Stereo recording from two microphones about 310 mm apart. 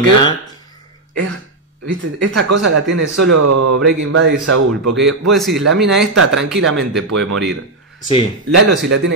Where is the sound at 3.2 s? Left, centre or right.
Right.